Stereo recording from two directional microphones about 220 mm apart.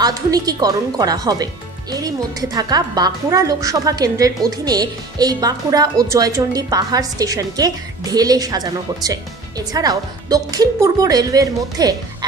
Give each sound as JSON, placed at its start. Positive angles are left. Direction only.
{"t": 0.0, "sound": "speech", "side_deg": -15}